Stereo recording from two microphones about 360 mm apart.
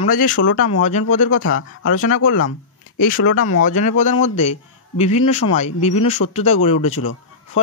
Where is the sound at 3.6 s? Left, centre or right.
Centre.